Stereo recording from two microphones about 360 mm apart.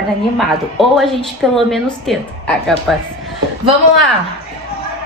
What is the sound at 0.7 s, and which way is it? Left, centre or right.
A woman's voice, centre.